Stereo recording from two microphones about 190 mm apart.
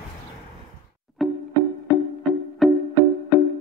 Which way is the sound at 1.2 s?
Centre (ahead or behind).